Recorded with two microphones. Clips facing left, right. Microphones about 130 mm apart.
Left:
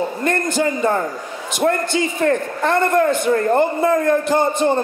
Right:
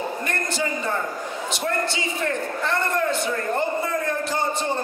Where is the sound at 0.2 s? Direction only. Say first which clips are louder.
Left 8 dB; 50° left (ahead or behind).